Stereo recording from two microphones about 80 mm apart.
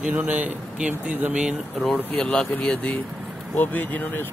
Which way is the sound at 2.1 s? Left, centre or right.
Centre.